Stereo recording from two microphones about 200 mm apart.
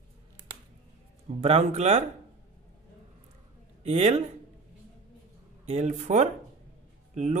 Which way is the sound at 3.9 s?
35° right (ahead or behind).